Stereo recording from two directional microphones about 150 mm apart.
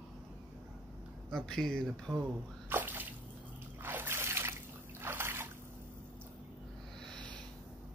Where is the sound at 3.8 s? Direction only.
15° right (ahead or behind).